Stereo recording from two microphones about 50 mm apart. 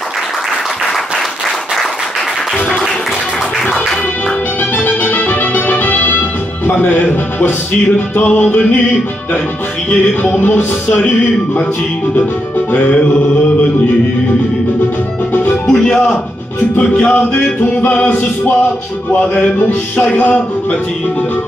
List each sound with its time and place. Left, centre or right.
4.7 s music: left
8.2 s music: left
10.3 s music: left
12.7 s music: left
15.6 s speech: centre
16.7 s music: left
17.6 s music: left
19.0 s music: centre
20.0 s music: left